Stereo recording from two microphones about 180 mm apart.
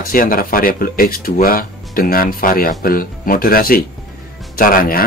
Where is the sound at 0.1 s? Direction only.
50° left (ahead or behind).